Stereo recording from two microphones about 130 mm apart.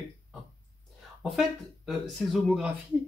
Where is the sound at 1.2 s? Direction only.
Centre (ahead or behind).